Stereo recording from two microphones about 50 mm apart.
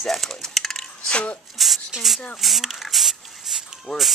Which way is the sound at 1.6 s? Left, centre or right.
Centre.